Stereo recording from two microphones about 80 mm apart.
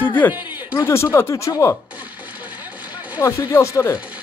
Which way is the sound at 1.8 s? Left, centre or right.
Right.